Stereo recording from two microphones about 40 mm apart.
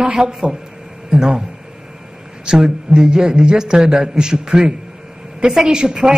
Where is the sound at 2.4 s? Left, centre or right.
Centre.